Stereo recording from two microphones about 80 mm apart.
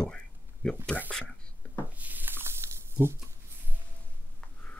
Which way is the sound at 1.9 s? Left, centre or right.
Right.